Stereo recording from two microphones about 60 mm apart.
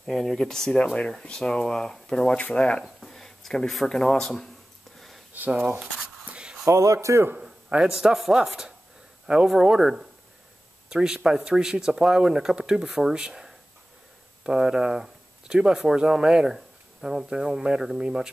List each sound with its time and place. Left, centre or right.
0.0 s speech: centre
2.3 s speech: centre
2.8 s speech: centre
5.3 s speech: right
6.6 s speech: right
7.8 s speech: centre